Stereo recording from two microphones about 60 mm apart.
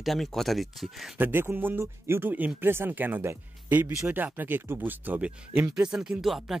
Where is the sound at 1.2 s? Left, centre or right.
Right.